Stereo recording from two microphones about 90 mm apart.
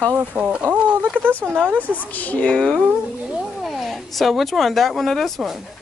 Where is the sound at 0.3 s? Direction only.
15° right (ahead or behind).